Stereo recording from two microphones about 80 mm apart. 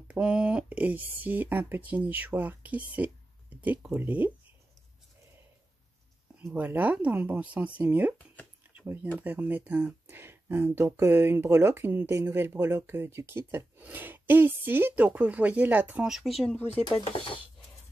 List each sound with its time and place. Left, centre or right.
0.1 s speech: centre
6.5 s speech: right
16.0 s speech: centre